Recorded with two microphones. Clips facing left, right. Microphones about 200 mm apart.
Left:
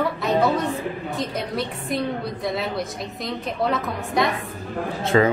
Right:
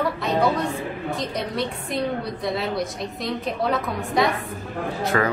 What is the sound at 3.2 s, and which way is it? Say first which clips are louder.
A woman's voice: even; centre (ahead or behind).